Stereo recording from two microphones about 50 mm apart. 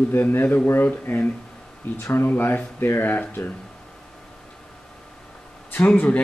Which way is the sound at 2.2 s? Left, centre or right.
Left.